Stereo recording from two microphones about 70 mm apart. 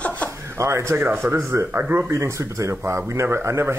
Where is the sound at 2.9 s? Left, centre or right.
Right.